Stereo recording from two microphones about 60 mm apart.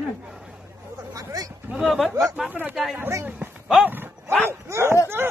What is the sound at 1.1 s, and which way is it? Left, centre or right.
Speech, right.